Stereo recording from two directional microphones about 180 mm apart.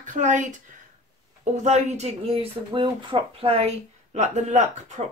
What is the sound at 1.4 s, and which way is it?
Speech, 40° right (ahead or behind).